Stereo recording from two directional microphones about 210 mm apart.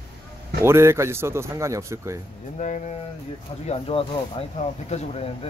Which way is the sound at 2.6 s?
35° left (ahead or behind).